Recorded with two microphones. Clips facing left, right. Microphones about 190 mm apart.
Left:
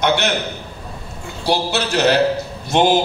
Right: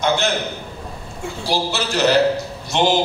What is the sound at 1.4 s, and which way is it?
Speech, 65° left (ahead or behind).